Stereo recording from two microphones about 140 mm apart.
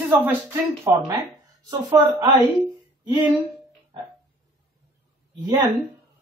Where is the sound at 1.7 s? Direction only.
25° right (ahead or behind).